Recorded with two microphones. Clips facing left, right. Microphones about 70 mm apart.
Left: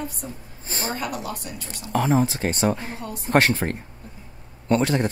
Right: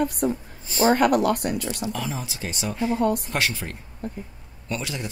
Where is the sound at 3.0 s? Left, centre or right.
Right.